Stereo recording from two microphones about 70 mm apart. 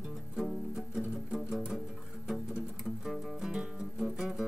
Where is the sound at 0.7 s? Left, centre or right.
Centre.